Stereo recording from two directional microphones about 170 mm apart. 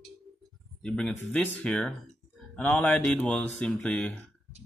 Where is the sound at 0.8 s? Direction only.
5° left (ahead or behind).